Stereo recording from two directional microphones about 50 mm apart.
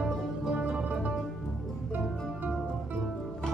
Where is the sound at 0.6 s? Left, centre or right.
Right.